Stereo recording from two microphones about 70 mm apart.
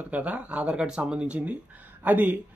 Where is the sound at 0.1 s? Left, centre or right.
Centre.